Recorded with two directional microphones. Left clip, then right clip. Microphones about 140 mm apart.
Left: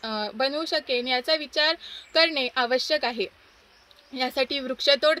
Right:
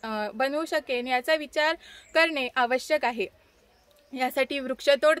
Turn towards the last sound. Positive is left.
turn(degrees=-70)  # may be behind; listen again after turning